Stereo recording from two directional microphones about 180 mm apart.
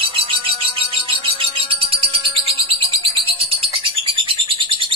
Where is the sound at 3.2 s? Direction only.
30° right (ahead or behind).